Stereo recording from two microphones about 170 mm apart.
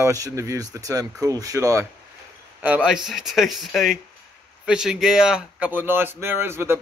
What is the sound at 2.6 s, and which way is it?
Speech, 5° right (ahead or behind).